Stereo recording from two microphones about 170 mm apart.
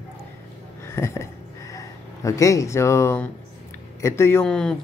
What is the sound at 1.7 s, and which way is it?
Speech, 20° left (ahead or behind).